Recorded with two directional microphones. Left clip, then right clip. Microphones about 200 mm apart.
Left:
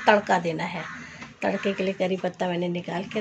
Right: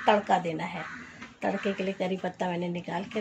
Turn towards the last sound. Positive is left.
turn(degrees=15)  # may be behind; listen again after turning